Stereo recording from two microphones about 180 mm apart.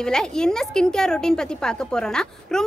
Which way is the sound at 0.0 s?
5° left (ahead or behind).